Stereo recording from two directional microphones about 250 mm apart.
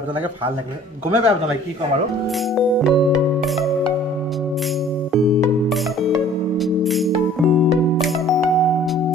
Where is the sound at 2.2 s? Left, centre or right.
Centre.